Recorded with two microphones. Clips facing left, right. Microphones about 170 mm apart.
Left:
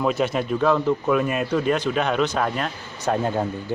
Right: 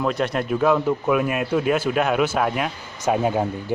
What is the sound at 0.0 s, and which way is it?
A man's voice, centre (ahead or behind).